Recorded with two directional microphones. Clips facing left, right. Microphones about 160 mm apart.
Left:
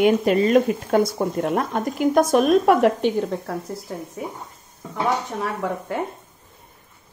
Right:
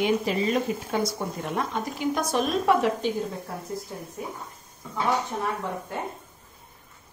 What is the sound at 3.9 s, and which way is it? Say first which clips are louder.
Speech: left 6 dB; 90° left.